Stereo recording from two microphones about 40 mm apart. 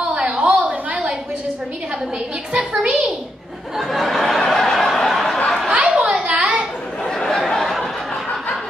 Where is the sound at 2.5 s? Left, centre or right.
Right.